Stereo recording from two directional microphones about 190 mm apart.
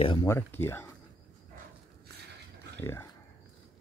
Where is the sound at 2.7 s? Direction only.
15° left (ahead or behind).